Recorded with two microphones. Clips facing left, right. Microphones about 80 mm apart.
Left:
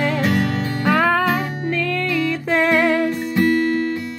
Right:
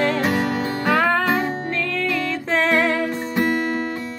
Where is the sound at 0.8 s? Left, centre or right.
Centre.